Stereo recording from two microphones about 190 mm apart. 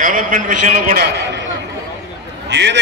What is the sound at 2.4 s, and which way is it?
Speech, 65° right (ahead or behind).